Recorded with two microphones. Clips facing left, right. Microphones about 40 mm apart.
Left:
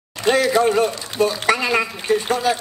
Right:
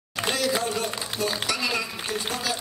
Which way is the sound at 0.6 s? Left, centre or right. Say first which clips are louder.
Left 11 dB; left.